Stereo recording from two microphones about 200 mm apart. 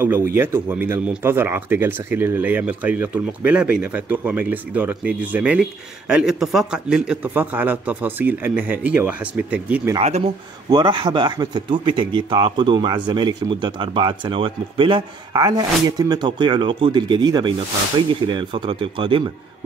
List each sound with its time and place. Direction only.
0.0 s speech: 10° right (ahead or behind)
9.9 s speech: 30° right (ahead or behind)